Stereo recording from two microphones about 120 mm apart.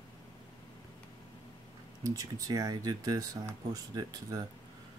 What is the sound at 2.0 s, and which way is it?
Speech, 30° right (ahead or behind).